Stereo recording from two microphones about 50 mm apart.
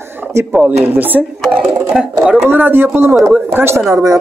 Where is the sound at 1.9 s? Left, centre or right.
Centre.